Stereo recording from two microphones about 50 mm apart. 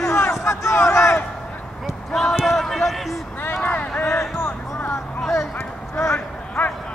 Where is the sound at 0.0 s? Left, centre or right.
Left.